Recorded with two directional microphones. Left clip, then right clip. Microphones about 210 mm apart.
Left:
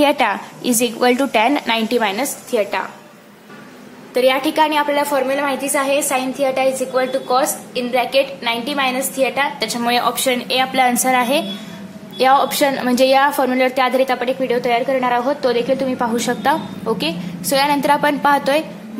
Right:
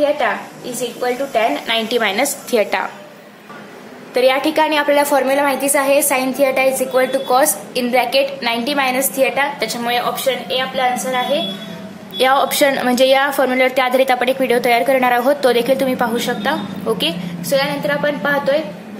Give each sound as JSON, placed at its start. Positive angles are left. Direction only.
{"t": 0.7, "sound": "a woman's voice", "side_deg": 30}
{"t": 2.5, "sound": "a woman's voice", "side_deg": -5}
{"t": 4.1, "sound": "a woman's voice", "side_deg": 5}
{"t": 9.8, "sound": "a woman's voice", "side_deg": 20}
{"t": 10.1, "sound": "a woman's voice", "side_deg": 30}
{"t": 12.2, "sound": "a woman's voice", "side_deg": 5}
{"t": 16.2, "sound": "a woman's voice", "side_deg": 15}
{"t": 17.5, "sound": "a woman's voice", "side_deg": 30}